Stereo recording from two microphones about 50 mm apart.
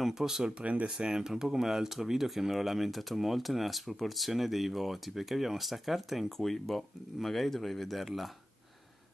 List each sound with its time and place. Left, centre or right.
0.0 s speech: centre
0.6 s speech: right
0.8 s speech: centre